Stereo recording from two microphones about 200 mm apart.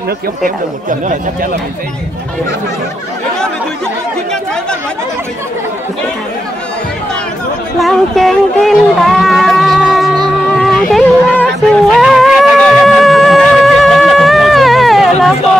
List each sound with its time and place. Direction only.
0.4 s speech: 40° right (ahead or behind)
7.8 s speech: centre (ahead or behind)
10.5 s a sound: centre (ahead or behind)
11.9 s music: centre (ahead or behind)